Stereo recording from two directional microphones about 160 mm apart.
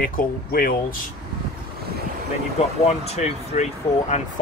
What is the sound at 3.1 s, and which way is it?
Speech, 40° left (ahead or behind).